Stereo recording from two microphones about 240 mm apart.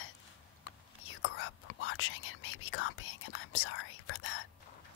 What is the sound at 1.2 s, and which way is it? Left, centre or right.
Whispering, left.